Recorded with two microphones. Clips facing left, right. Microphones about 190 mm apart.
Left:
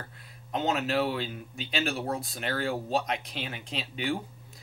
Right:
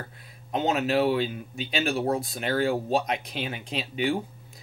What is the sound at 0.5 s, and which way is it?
Speech, 15° right (ahead or behind).